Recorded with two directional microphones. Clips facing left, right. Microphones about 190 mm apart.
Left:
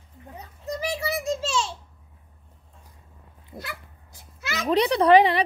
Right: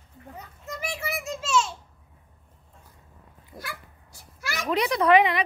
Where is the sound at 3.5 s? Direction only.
20° left (ahead or behind).